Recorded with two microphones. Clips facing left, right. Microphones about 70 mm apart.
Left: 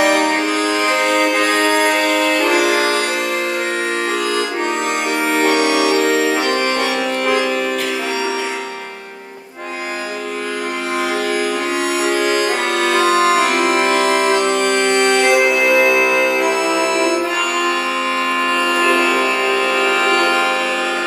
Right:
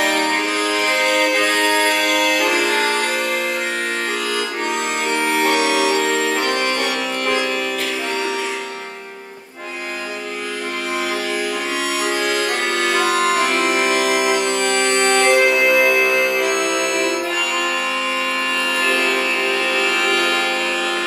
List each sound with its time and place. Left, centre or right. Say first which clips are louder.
0.0 s music: left 4 dB; centre
5.2 s music: left 3 dB; centre
12.0 s music: left 4 dB; centre
18.8 s music: left 4 dB; centre